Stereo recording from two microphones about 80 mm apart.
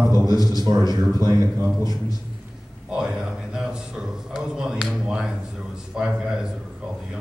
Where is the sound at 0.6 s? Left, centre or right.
Right.